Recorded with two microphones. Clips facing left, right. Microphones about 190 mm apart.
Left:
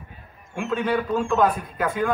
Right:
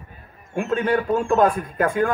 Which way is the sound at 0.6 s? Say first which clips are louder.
Right 3 dB; 45° right (ahead or behind).